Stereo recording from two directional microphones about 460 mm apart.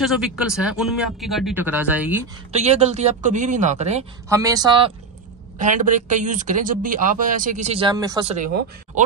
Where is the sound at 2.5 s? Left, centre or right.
Centre.